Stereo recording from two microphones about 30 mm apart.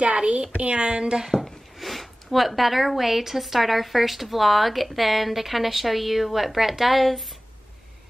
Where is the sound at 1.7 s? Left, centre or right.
Centre.